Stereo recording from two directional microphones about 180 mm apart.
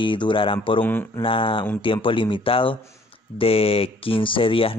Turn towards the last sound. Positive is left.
turn(degrees=30)  # may be behind; listen again after turning